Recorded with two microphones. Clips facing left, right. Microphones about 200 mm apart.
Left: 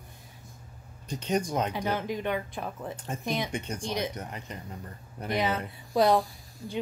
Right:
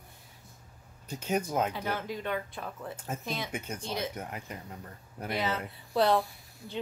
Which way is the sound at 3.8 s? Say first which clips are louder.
Left 3 dB; 15° left (ahead or behind).